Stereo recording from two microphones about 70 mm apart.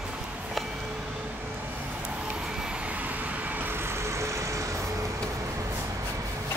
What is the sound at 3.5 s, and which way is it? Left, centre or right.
Vehicle, right.